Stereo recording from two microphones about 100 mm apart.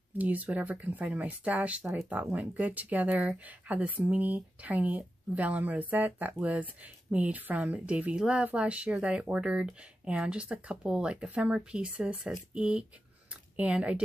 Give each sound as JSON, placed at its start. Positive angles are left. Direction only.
{"t": 0.2, "sound": "speech", "side_deg": -15}